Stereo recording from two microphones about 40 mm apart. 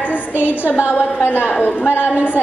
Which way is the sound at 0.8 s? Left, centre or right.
Left.